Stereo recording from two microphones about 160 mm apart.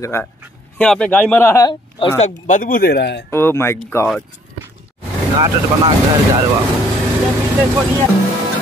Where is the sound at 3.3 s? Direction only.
15° left (ahead or behind).